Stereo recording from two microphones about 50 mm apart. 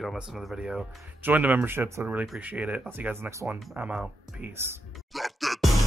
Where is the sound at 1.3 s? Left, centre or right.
Right.